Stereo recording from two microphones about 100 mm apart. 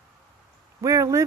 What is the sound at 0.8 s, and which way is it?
Speech, 35° right (ahead or behind).